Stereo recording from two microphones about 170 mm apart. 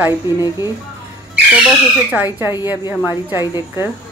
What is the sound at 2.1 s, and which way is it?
Speech, 10° right (ahead or behind).